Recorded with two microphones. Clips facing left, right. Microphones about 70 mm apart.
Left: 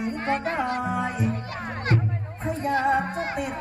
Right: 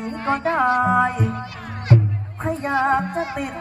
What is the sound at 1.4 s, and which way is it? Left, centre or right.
Music, left.